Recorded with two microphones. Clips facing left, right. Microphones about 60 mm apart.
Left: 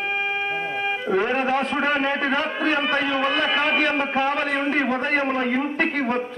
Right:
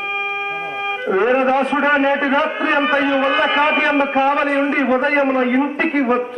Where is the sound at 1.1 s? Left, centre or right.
Right.